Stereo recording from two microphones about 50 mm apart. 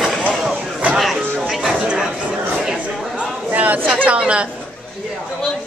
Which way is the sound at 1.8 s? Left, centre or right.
Centre.